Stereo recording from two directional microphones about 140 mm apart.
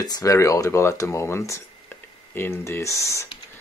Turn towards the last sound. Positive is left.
turn(degrees=20)  # may be behind; listen again after turning